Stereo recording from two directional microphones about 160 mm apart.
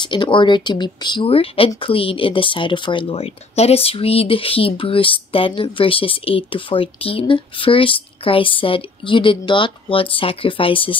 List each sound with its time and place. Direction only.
0.0 s speech: 30° left (ahead or behind)